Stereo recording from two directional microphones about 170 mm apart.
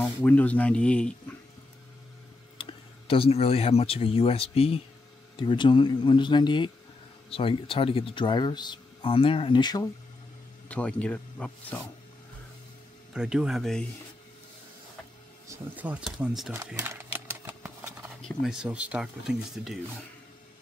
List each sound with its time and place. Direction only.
0.0 s speech: 10° left (ahead or behind)
2.5 s speech: 30° left (ahead or behind)
10.7 s speech: 5° left (ahead or behind)
13.1 s speech: 5° right (ahead or behind)
15.4 s speech: 15° right (ahead or behind)
16.7 s a sound: 15° right (ahead or behind)
18.2 s speech: centre (ahead or behind)